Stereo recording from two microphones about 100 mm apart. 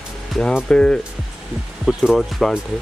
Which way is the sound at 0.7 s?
10° left (ahead or behind).